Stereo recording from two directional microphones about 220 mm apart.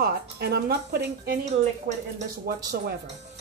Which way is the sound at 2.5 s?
45° right (ahead or behind).